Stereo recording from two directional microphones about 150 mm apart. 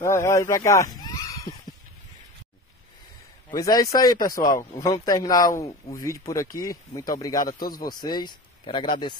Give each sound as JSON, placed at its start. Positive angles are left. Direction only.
{"t": 0.0, "sound": "speech", "side_deg": 20}
{"t": 3.5, "sound": "speech", "side_deg": 25}
{"t": 7.6, "sound": "speech", "side_deg": 75}
{"t": 7.9, "sound": "speech", "side_deg": 30}